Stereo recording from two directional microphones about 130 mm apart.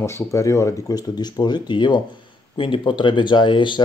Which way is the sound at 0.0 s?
20° left (ahead or behind).